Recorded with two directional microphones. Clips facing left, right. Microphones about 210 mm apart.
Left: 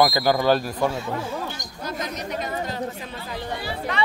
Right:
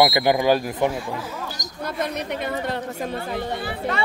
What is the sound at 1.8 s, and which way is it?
Speech, 60° right (ahead or behind).